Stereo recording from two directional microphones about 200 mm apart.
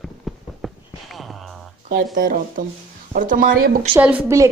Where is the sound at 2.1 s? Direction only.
45° right (ahead or behind).